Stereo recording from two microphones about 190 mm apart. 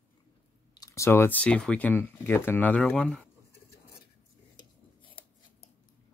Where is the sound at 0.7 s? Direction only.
15° left (ahead or behind).